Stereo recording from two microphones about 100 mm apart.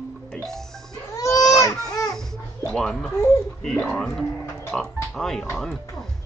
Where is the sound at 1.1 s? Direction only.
35° left (ahead or behind).